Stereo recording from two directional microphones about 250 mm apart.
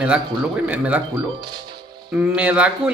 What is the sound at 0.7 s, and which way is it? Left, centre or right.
Speech, centre.